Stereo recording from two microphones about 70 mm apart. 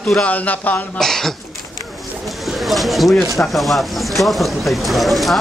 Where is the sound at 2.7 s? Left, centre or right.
Centre.